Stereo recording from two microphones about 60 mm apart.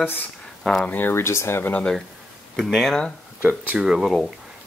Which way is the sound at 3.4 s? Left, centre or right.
Right.